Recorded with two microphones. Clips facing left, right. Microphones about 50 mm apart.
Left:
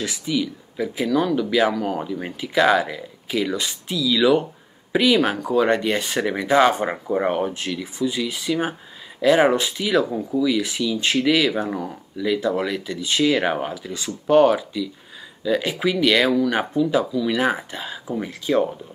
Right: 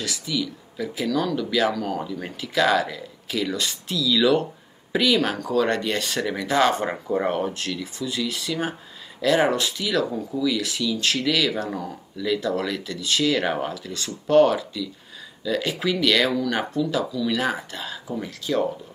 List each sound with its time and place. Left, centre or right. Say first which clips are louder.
0.0 s speech: left 4 dB; left